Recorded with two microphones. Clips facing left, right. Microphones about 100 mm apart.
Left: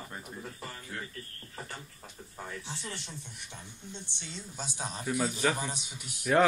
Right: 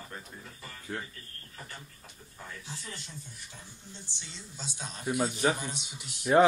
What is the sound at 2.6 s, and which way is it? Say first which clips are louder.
Speech: left 3 dB; 75° left (ahead or behind).